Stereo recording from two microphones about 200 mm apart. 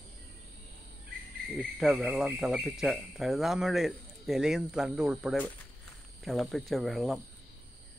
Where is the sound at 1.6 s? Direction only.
Centre (ahead or behind).